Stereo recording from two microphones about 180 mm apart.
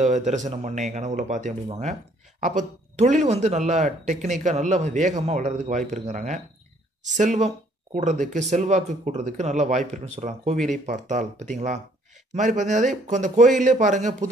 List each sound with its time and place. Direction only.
0.0 s a man's voice: 40° right (ahead or behind)